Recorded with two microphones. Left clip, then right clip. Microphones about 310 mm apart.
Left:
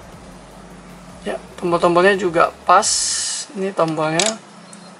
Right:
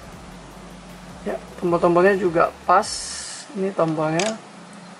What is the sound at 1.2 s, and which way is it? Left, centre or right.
Speech, centre.